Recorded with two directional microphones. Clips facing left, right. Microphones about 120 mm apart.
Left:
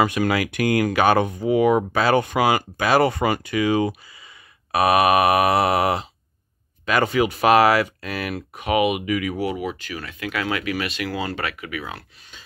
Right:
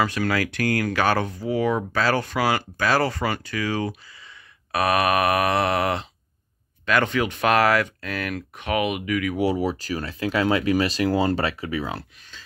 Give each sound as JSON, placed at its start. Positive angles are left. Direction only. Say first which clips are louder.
{"t": 0.0, "sound": "speech", "louder": "left 3 dB", "side_deg": 15}
{"t": 9.4, "sound": "speech", "louder": "right 3 dB", "side_deg": -35}